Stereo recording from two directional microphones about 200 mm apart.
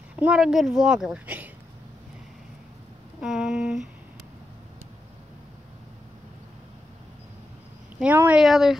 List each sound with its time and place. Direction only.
0.1 s a child's voice: 5° right (ahead or behind)
3.2 s a child's voice: 5° right (ahead or behind)
8.0 s a child's voice: 10° right (ahead or behind)